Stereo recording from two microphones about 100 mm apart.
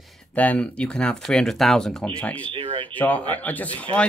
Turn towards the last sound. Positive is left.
turn(degrees=15)  # may be behind; listen again after turning